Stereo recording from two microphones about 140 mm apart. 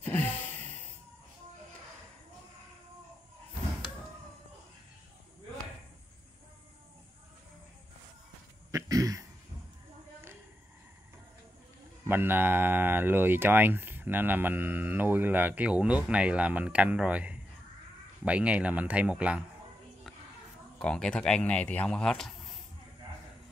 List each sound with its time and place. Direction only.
0.0 s a sound: 15° left (ahead or behind)
8.7 s throat clearing: 25° right (ahead or behind)
12.1 s speech: 15° right (ahead or behind)
20.8 s speech: 5° left (ahead or behind)